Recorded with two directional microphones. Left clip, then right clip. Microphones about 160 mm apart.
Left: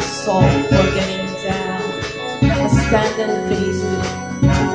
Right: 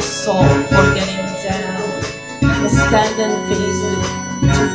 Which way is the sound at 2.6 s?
30° right (ahead or behind).